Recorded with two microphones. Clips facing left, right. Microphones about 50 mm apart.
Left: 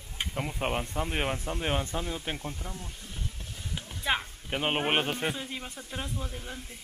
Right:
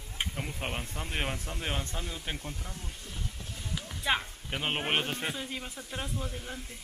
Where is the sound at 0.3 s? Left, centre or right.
Centre.